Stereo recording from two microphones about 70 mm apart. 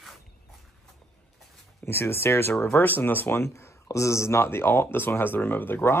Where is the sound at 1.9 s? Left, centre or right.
Left.